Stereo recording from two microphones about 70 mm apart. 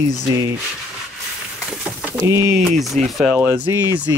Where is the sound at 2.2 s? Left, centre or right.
Right.